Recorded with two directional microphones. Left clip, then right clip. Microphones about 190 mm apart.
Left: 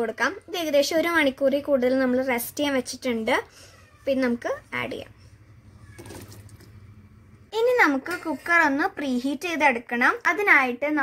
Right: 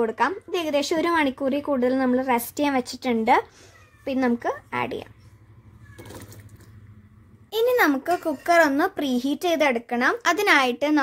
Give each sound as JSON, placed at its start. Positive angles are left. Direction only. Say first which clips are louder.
{"t": 0.0, "sound": "a woman's voice", "louder": "right 3 dB", "side_deg": -45}
{"t": 7.5, "sound": "a child's voice", "louder": "even", "side_deg": -60}
{"t": 10.2, "sound": "a child's voice", "louder": "right 1 dB", "side_deg": -60}